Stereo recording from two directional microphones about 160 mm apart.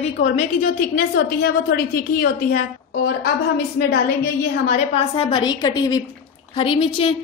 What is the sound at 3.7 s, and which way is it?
A woman's voice, 65° left (ahead or behind).